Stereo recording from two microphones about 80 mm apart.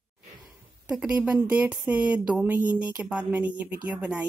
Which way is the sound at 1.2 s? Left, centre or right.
Centre.